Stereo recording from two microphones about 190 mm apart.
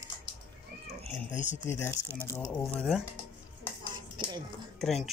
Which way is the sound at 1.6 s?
10° left (ahead or behind).